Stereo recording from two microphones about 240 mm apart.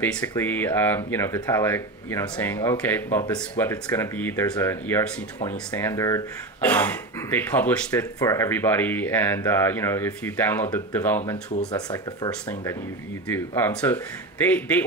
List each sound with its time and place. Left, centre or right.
0.3 s speech: centre
13.3 s speech: centre